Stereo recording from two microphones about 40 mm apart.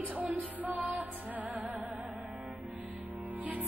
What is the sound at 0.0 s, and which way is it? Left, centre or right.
Music, right.